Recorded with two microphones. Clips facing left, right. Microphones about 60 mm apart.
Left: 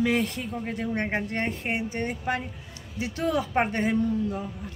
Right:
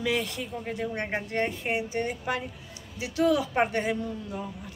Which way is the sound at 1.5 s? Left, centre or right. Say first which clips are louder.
Left 1 dB; left.